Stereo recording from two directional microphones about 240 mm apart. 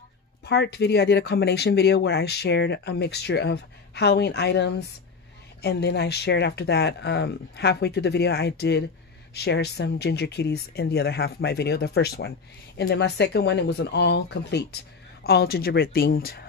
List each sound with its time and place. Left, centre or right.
0.5 s a woman's voice: left